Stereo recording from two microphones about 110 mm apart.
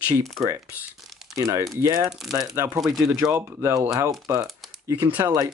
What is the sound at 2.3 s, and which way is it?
Speech, 30° right (ahead or behind).